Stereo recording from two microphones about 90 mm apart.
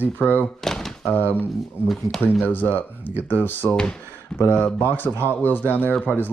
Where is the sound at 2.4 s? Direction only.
20° left (ahead or behind).